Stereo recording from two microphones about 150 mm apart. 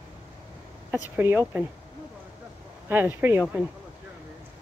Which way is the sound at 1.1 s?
15° right (ahead or behind).